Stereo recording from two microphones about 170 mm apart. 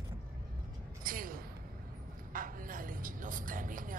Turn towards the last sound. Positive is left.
turn(degrees=-55)  # may be behind; listen again after turning